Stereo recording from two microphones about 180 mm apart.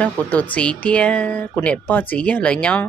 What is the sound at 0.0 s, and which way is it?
A woman's voice, 10° left (ahead or behind).